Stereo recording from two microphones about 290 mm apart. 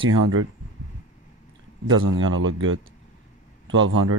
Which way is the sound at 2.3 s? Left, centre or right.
Right.